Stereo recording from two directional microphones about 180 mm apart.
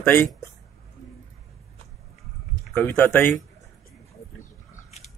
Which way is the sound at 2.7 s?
10° left (ahead or behind).